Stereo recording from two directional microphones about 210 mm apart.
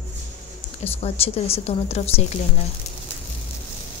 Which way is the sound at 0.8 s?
30° left (ahead or behind).